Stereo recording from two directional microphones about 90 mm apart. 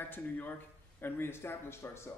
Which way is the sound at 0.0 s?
20° left (ahead or behind).